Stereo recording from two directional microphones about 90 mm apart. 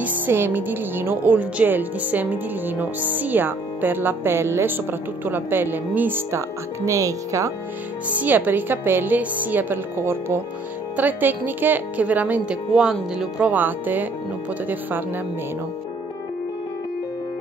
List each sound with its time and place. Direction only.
0.0 s speech: 25° right (ahead or behind)
6.9 s speech: 40° right (ahead or behind)
8.1 s speech: 15° right (ahead or behind)
12.7 s speech: 5° right (ahead or behind)
13.5 s speech: 20° right (ahead or behind)